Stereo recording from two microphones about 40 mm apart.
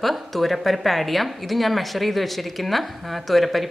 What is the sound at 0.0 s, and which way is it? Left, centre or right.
A woman's voice, centre.